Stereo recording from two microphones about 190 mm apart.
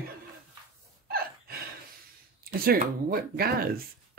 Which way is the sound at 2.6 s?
50° right (ahead or behind).